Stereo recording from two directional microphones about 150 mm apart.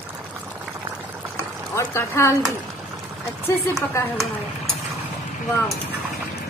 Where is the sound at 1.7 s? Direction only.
15° left (ahead or behind).